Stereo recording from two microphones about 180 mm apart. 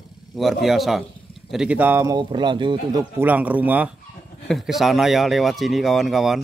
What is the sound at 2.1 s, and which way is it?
Speech, 25° right (ahead or behind).